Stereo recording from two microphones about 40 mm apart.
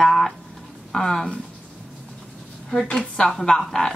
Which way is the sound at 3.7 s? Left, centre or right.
Centre.